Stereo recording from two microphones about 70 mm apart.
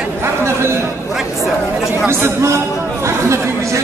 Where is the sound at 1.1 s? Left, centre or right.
Centre.